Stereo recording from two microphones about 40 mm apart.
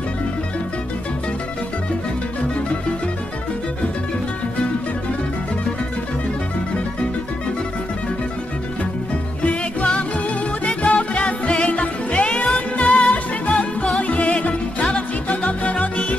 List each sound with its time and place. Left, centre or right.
9.4 s music: left
12.8 s music: centre
13.9 s music: left